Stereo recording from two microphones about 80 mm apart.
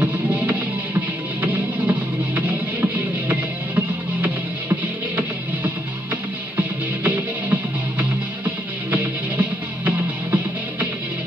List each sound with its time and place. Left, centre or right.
1.4 s music: right
8.9 s music: right